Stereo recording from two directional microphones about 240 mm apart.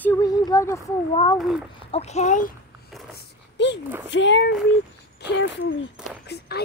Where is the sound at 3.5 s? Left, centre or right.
Left.